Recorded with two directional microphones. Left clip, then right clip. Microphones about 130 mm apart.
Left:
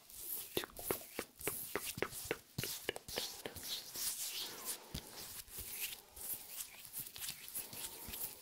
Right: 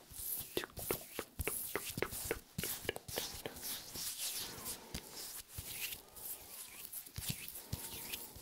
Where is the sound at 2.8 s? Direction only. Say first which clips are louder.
Right 1 dB; 5° right (ahead or behind).